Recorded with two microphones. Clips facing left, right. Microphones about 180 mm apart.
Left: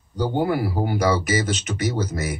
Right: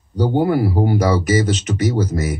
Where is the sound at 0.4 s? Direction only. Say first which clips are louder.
Right 5 dB; 35° right (ahead or behind).